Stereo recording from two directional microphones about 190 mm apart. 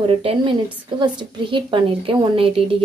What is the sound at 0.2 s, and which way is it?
A woman's voice, 30° right (ahead or behind).